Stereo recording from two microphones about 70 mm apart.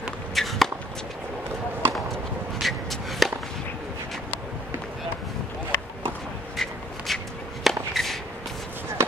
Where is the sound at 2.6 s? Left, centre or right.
Centre.